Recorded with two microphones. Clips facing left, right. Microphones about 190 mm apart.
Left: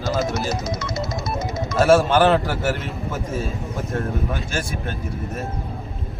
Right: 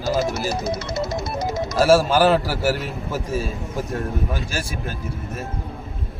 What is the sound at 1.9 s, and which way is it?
Speech, 10° right (ahead or behind).